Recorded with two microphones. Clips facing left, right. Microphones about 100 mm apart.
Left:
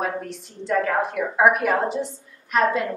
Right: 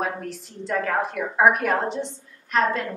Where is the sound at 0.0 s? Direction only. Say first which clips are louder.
Left 1 dB; centre (ahead or behind).